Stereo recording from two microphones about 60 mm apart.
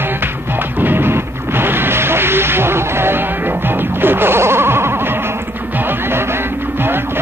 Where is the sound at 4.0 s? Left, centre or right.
Right.